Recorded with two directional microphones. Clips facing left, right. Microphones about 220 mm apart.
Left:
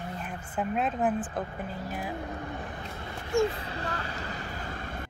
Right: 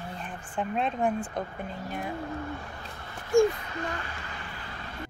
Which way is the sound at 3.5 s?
30° left (ahead or behind).